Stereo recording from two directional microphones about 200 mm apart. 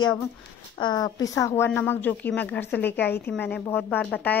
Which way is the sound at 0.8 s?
20° left (ahead or behind).